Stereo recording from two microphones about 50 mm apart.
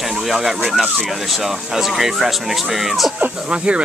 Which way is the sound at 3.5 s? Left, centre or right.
Right.